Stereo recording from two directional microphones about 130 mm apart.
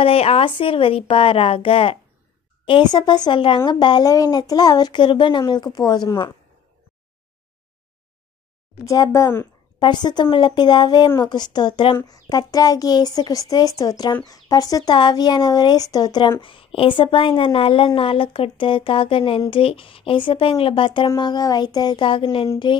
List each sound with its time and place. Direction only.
0.0 s speech: 50° left (ahead or behind)
8.8 s speech: 25° left (ahead or behind)
9.8 s speech: 35° left (ahead or behind)
12.1 s speech: 30° left (ahead or behind); by 22.5 s 45° left (ahead or behind)